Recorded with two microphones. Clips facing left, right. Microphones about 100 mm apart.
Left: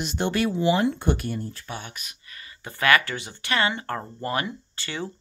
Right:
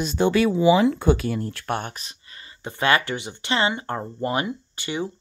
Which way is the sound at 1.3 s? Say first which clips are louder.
Right 7 dB; 80° right.